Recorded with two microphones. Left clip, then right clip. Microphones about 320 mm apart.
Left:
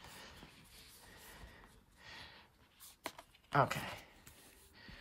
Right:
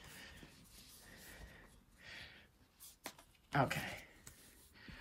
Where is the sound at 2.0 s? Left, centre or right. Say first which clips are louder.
Even; centre.